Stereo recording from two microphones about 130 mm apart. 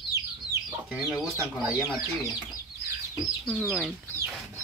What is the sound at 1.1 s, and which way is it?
Speech, 10° right (ahead or behind).